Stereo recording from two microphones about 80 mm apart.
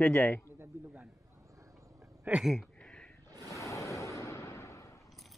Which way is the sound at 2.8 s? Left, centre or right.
Centre.